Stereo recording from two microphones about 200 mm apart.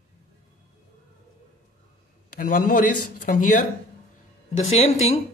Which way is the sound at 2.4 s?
40° left (ahead or behind).